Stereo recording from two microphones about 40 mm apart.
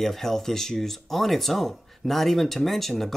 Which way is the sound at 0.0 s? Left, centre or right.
Centre.